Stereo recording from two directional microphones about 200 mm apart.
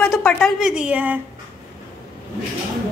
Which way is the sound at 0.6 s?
5° right (ahead or behind).